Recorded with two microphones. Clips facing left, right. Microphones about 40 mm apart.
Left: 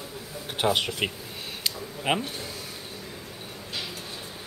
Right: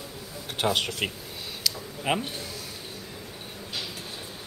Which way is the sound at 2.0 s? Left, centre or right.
Centre.